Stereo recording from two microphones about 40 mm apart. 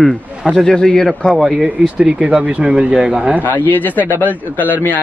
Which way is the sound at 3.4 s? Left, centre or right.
Left.